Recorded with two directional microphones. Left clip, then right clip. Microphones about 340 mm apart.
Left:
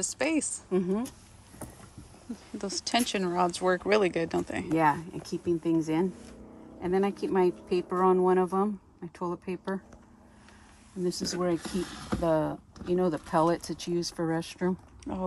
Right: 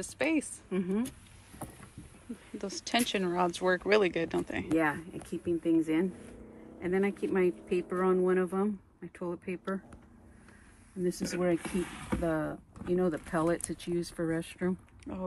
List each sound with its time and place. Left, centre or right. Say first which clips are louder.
0.0 s speech: left 2 dB; centre
0.7 s speech: left 5 dB; left
2.6 s speech: left 3 dB; centre
4.7 s speech: left 5 dB; centre
11.1 s speech: left 1 dB; centre